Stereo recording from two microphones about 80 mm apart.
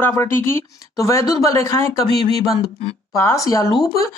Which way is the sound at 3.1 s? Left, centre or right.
Left.